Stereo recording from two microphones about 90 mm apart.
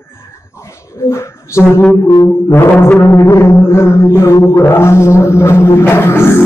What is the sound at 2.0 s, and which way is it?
Music, 60° left (ahead or behind).